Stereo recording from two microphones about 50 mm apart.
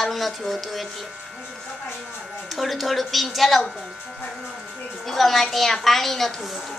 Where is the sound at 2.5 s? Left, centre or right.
Centre.